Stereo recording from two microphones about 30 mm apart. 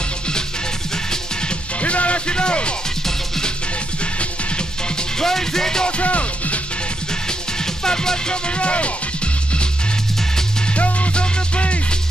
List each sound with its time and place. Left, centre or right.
0.9 s music: left
1.8 s music: left
4.0 s music: left
5.2 s music: centre
5.9 s music: left
7.2 s music: left
8.5 s music: left
10.7 s music: left
11.1 s music: left